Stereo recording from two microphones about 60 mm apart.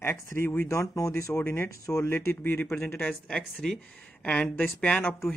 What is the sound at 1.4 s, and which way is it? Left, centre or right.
Speech, left.